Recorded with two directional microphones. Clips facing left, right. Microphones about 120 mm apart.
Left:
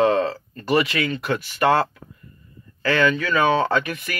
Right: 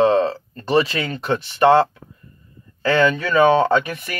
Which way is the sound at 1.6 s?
25° right (ahead or behind).